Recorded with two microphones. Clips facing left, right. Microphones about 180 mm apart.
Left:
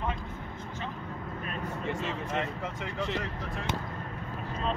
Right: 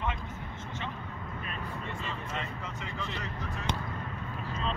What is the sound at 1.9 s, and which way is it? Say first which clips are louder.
Speech: left 5 dB; 90° left.